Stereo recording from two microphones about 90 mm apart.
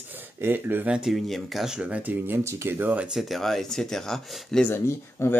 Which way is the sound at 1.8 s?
15° right (ahead or behind).